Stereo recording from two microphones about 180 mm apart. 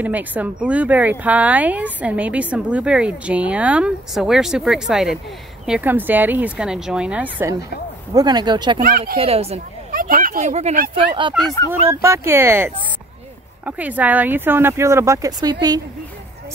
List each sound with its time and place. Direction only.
0.0 s speech: 10° right (ahead or behind)
8.1 s speech: 20° right (ahead or behind)
8.8 s speech: 55° right (ahead or behind)
9.2 s speech: 35° right (ahead or behind)
9.8 s speech: 50° right (ahead or behind)
11.0 s speech: 25° right (ahead or behind)
11.9 s speech: 15° right (ahead or behind)